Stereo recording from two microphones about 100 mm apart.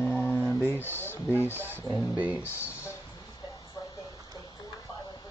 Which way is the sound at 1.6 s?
20° right (ahead or behind).